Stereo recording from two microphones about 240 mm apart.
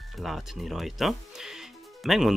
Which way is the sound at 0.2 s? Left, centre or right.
Centre.